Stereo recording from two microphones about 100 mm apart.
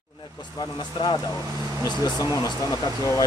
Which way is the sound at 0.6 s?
45° left (ahead or behind).